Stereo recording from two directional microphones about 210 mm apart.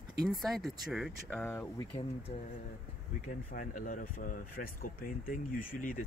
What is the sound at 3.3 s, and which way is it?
Speech, 40° left (ahead or behind).